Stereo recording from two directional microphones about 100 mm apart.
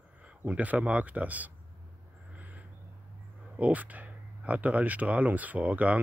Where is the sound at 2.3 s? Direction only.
15° right (ahead or behind).